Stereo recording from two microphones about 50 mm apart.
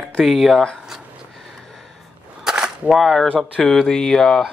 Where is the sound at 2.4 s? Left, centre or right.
Centre.